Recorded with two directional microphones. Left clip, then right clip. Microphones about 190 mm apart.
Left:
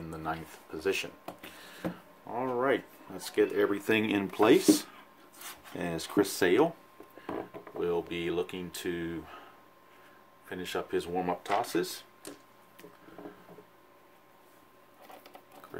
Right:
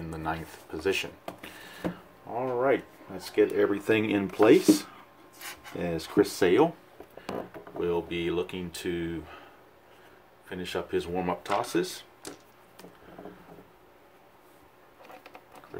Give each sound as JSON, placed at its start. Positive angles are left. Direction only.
{"t": 0.1, "sound": "speech", "side_deg": -5}
{"t": 2.3, "sound": "speech", "side_deg": 20}
{"t": 7.8, "sound": "speech", "side_deg": 0}
{"t": 10.5, "sound": "speech", "side_deg": 5}